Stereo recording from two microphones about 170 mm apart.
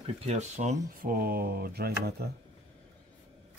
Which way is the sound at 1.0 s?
60° right (ahead or behind).